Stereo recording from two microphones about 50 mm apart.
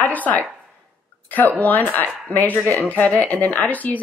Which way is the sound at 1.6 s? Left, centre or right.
Left.